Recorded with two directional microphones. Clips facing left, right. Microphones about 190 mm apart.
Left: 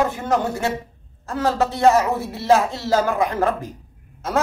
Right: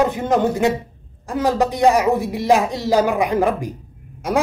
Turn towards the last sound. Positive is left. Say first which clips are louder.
# right 3 dB
turn(degrees=-15)  # may be behind; listen again after turning